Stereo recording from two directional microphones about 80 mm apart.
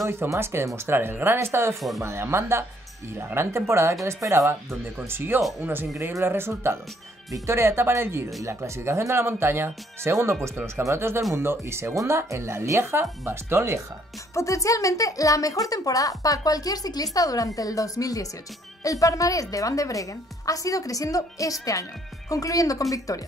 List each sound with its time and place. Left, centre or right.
0.0 s speech: right
14.3 s speech: left